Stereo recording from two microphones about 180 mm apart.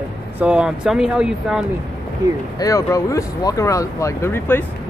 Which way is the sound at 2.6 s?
20° left (ahead or behind).